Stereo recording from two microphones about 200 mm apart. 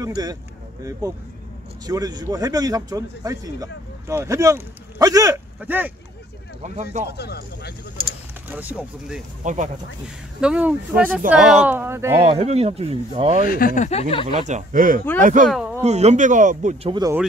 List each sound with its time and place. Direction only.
0.0 s speech: 20° right (ahead or behind)
1.9 s speech: 20° right (ahead or behind)
6.6 s speech: 40° right (ahead or behind)
7.2 s speech: 55° left (ahead or behind)
8.5 s speech: 10° right (ahead or behind)
9.4 s speech: 40° right (ahead or behind)
10.4 s speech: 5° right (ahead or behind)
12.3 s speech: 30° right (ahead or behind)
13.4 s speech: 45° left (ahead or behind); by 14.2 s 30° left (ahead or behind)
14.2 s speech: 35° right (ahead or behind)
15.4 s speech: centre (ahead or behind)
15.8 s speech: 35° right (ahead or behind)
16.9 s speech: 20° right (ahead or behind)